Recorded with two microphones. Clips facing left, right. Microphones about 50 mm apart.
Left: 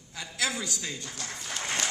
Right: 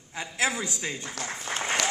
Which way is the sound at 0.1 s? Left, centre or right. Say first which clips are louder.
Right 4 dB; right.